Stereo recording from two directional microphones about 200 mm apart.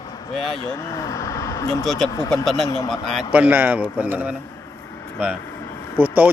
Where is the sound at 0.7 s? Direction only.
15° left (ahead or behind).